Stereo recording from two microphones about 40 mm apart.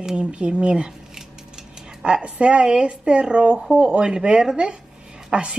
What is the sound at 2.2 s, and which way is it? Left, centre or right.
Speech, right.